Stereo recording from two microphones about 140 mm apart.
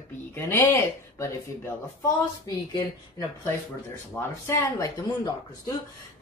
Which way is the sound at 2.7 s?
25° left (ahead or behind).